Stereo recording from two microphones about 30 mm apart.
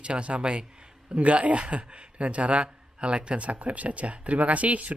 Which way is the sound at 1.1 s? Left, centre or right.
Right.